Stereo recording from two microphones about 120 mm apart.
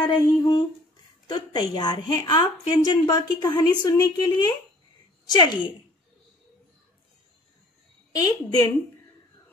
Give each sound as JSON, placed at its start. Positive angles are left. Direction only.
{"t": 0.0, "sound": "a woman's voice", "side_deg": 35}
{"t": 8.1, "sound": "a woman's voice", "side_deg": 30}